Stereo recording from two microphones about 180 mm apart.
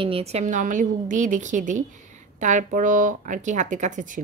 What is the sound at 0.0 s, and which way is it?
Speech, 35° right (ahead or behind).